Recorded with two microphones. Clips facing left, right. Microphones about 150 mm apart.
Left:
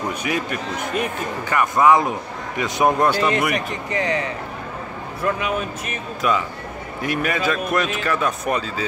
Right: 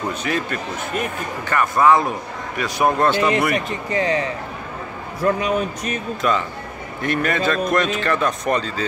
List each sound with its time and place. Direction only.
0.1 s a man's voice: 15° left (ahead or behind)
3.2 s a man's voice: 20° right (ahead or behind)
6.2 s a man's voice: 10° left (ahead or behind)